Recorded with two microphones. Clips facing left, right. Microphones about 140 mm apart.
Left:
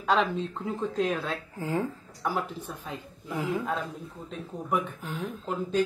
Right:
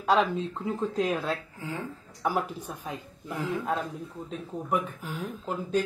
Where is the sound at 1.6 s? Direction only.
40° left (ahead or behind).